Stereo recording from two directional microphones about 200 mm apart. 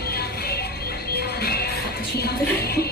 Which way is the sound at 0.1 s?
50° left (ahead or behind).